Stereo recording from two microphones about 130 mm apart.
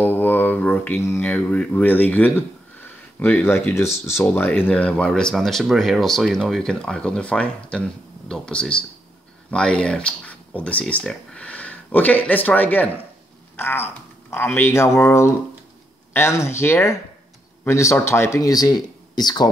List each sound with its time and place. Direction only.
0.0 s speech: 15° left (ahead or behind)
13.6 s a sound: 15° left (ahead or behind)
14.3 s speech: 15° left (ahead or behind)